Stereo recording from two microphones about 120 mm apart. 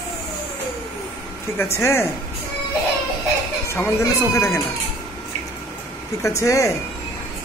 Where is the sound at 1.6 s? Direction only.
20° left (ahead or behind).